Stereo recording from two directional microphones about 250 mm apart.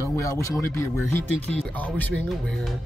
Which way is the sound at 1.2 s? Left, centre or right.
Right.